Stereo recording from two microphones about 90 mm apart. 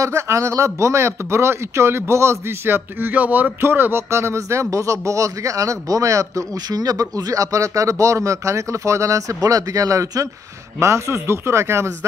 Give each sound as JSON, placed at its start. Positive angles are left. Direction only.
{"t": 0.0, "sound": "a man's voice", "side_deg": -35}